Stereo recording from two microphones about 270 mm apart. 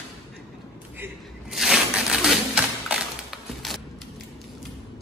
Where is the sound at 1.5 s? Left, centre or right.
Centre.